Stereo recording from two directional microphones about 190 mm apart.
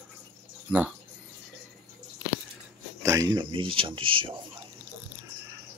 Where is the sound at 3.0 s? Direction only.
15° right (ahead or behind).